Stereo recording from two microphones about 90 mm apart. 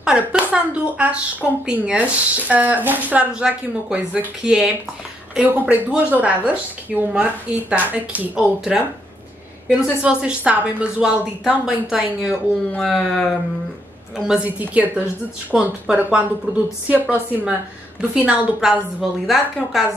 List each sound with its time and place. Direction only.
0.0 s a woman's voice: 10° right (ahead or behind)
12.7 s speech: 5° left (ahead or behind)
14.1 s a woman's voice: 10° right (ahead or behind)